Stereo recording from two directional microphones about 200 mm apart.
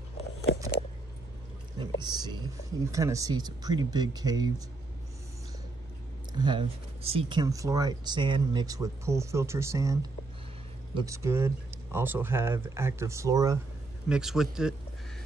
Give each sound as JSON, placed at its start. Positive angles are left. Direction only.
{"t": 1.8, "sound": "a sound", "side_deg": -20}
{"t": 2.9, "sound": "speech", "side_deg": -15}
{"t": 6.3, "sound": "speech", "side_deg": -20}
{"t": 11.0, "sound": "speech", "side_deg": -15}
{"t": 14.0, "sound": "a man's voice", "side_deg": -5}